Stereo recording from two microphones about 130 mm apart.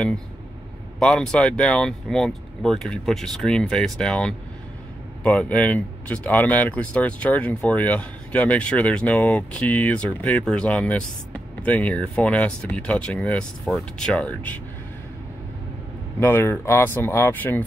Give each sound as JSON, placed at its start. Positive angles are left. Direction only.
{"t": 0.9, "sound": "speech", "side_deg": 5}
{"t": 16.2, "sound": "speech", "side_deg": 15}